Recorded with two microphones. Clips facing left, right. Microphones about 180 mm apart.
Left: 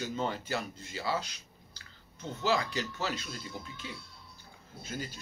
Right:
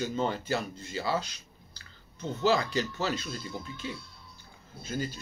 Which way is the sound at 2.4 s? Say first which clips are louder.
Right 4 dB; 15° left (ahead or behind).